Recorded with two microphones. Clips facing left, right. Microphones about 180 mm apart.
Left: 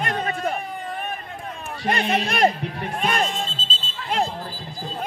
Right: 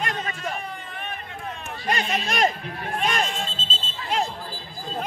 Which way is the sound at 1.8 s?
55° left (ahead or behind).